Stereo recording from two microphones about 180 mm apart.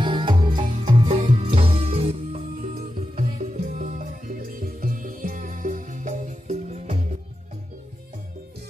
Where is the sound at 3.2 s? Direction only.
40° right (ahead or behind).